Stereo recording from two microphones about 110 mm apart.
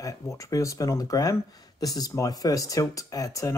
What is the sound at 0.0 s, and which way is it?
Speech, 30° left (ahead or behind).